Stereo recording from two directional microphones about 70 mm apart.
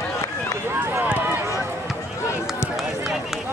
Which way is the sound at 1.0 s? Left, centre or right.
Right.